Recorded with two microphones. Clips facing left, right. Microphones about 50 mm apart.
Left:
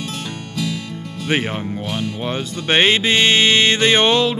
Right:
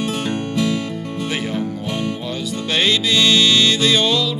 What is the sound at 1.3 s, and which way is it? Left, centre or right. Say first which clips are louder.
Music: left 4 dB; left.